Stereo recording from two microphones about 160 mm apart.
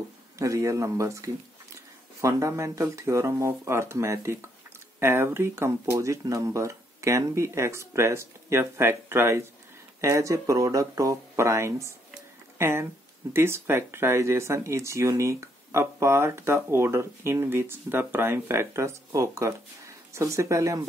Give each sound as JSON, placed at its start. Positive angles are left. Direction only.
{"t": 0.4, "sound": "speech", "side_deg": -20}